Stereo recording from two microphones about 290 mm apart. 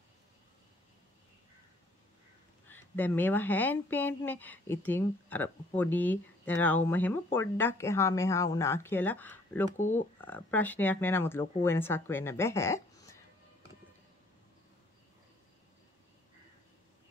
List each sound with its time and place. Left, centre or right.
2.7 s speech: centre
9.8 s speech: left
10.2 s speech: centre